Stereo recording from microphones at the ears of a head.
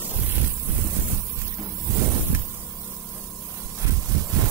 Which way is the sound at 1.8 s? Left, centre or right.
Right.